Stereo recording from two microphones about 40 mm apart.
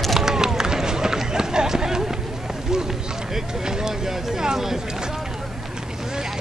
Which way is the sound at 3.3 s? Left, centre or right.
Centre.